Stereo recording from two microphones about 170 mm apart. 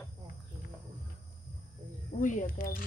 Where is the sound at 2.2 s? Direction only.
55° left (ahead or behind).